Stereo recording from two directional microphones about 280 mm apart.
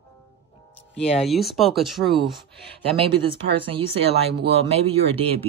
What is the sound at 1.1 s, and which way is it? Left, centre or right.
Speech, centre.